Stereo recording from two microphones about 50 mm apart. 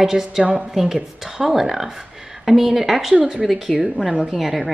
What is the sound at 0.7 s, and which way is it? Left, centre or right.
A woman's voice, centre.